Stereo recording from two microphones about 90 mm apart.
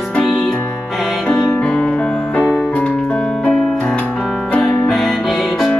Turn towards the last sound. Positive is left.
turn(degrees=0)  # may be behind; listen again after turning